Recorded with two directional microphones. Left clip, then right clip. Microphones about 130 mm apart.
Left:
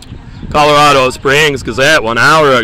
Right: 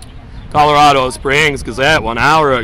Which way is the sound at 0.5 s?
25° left (ahead or behind).